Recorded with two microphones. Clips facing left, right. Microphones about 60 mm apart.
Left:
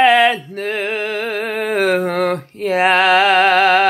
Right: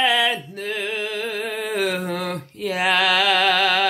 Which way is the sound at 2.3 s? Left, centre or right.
Left.